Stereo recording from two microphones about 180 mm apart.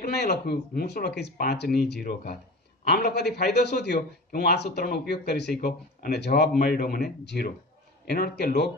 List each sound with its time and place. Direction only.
0.0 s a man's voice: 65° left (ahead or behind)